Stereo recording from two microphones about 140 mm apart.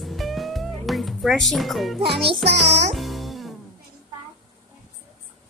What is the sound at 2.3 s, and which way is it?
Music, 50° right (ahead or behind).